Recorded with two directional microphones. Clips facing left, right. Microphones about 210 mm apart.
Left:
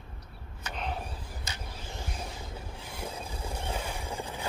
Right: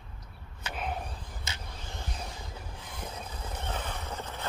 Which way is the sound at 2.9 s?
10° left (ahead or behind).